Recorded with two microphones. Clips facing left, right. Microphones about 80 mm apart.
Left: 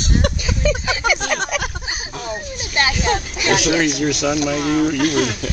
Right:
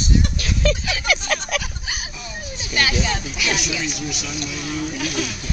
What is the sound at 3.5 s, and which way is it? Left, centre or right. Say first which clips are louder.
Speech: left 9 dB; left.